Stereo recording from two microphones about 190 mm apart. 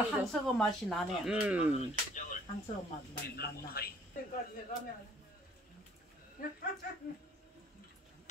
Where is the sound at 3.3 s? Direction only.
55° left (ahead or behind).